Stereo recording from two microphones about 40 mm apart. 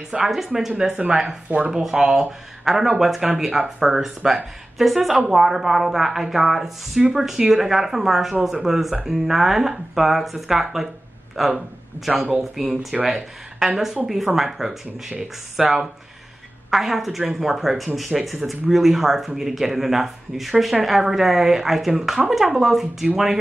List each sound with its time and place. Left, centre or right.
0.1 s speech: centre
0.7 s speech: right